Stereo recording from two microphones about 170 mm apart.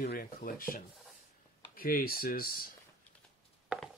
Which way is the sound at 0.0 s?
65° left (ahead or behind).